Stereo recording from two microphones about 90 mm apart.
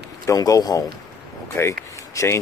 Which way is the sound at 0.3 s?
40° left (ahead or behind).